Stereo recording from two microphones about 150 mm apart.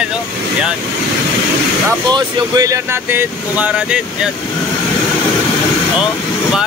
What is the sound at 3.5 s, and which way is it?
Speech, 10° right (ahead or behind).